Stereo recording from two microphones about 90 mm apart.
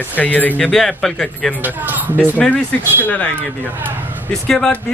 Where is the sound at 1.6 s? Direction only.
20° right (ahead or behind).